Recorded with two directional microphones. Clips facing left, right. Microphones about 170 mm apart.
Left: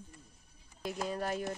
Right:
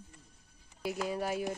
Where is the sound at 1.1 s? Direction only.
10° right (ahead or behind).